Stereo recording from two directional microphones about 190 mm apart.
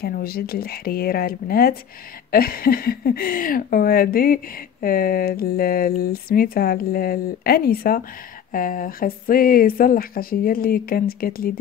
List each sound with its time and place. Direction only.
0.0 s speech: 50° left (ahead or behind)